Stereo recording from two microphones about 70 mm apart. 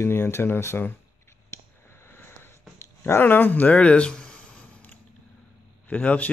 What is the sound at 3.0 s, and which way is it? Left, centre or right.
Speech, left.